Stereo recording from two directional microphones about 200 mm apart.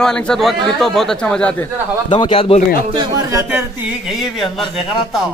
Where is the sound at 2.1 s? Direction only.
25° left (ahead or behind).